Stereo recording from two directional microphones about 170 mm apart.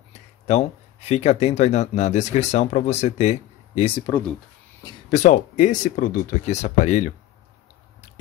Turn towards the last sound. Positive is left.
turn(degrees=45)  # may be behind; listen again after turning